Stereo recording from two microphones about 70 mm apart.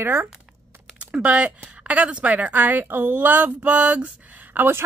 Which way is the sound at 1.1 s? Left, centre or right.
Centre.